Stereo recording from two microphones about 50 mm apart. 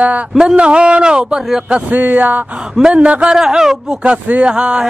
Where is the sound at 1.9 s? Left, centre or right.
Right.